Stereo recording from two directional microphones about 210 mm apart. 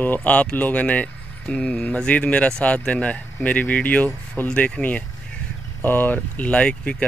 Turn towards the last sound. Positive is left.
turn(degrees=5)  # may be behind; listen again after turning